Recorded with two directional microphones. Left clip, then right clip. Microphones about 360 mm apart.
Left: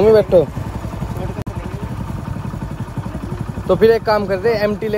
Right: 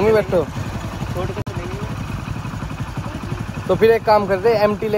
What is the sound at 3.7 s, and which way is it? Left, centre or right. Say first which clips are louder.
Speech: left 1 dB; centre.